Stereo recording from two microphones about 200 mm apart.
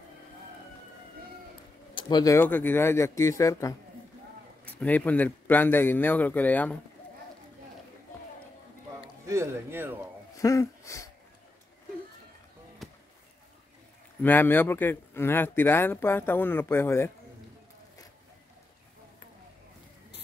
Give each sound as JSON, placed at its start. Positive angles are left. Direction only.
{"t": 2.0, "sound": "speech", "side_deg": 20}
{"t": 9.2, "sound": "a man's voice", "side_deg": -15}
{"t": 10.3, "sound": "speech", "side_deg": 15}
{"t": 12.8, "sound": "basketball bounce", "side_deg": 0}
{"t": 14.2, "sound": "speech", "side_deg": 10}